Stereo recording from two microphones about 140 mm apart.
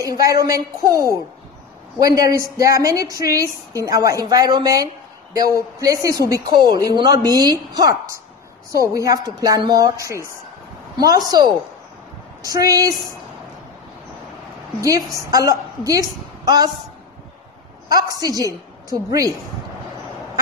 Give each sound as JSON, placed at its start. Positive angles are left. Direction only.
{"t": 0.1, "sound": "a woman's voice", "side_deg": -25}
{"t": 14.8, "sound": "a woman's voice", "side_deg": -25}
{"t": 17.8, "sound": "a woman's voice", "side_deg": -25}